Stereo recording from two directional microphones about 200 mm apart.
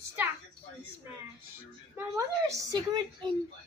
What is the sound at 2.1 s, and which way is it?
A woman's voice, 20° right (ahead or behind).